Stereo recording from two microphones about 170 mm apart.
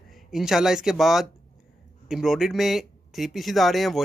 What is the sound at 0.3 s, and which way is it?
Speech, centre (ahead or behind).